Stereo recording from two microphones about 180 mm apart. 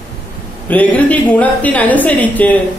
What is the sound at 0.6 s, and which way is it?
Speech, 10° left (ahead or behind).